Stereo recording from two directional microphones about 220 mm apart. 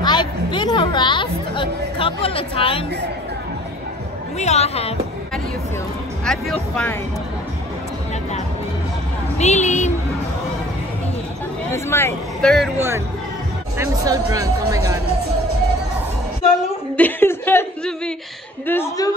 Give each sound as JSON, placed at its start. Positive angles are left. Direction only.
{"t": 0.0, "sound": "chatter", "side_deg": 20}
{"t": 4.4, "sound": "speech", "side_deg": 30}
{"t": 6.2, "sound": "speech", "side_deg": 5}
{"t": 9.4, "sound": "speech", "side_deg": 30}
{"t": 11.7, "sound": "speech", "side_deg": 10}
{"t": 12.7, "sound": "speech", "side_deg": -10}
{"t": 16.9, "sound": "chuckle", "side_deg": 10}
{"t": 18.7, "sound": "a woman's voice", "side_deg": 15}